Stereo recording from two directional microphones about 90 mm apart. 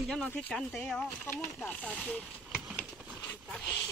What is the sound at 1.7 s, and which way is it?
Speech, 15° left (ahead or behind).